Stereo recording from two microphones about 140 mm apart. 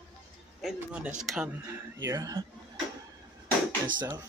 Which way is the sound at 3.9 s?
30° right (ahead or behind).